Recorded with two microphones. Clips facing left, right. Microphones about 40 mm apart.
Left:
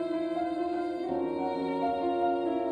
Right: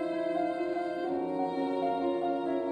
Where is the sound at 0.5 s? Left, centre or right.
Right.